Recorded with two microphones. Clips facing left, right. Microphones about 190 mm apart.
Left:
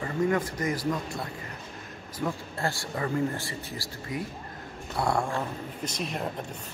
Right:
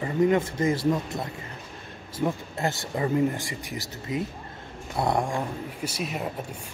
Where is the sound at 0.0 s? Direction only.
20° right (ahead or behind).